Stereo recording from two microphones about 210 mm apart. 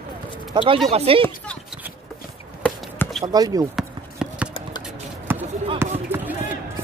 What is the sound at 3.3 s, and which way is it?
Speech, 15° right (ahead or behind).